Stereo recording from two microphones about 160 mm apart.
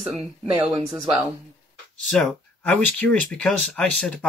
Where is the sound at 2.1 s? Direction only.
5° left (ahead or behind).